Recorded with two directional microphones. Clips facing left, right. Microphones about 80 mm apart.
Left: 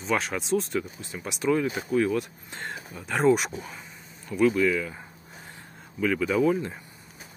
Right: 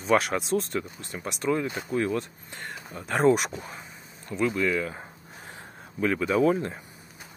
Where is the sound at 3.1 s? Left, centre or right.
Centre.